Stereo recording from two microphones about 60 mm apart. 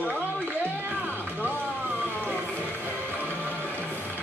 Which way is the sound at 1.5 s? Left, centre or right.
Left.